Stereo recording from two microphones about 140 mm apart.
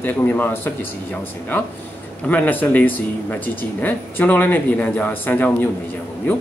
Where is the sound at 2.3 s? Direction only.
10° left (ahead or behind).